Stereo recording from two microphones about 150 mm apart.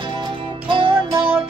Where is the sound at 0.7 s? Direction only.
35° right (ahead or behind).